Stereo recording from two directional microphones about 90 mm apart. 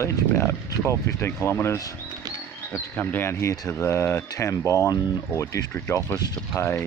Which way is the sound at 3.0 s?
20° left (ahead or behind).